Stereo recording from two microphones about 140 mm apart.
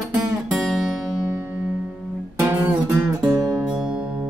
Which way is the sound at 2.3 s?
20° right (ahead or behind).